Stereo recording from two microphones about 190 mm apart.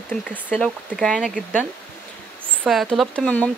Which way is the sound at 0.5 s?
Centre (ahead or behind).